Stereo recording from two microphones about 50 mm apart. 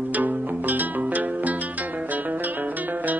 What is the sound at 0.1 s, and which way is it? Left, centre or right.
Music, right.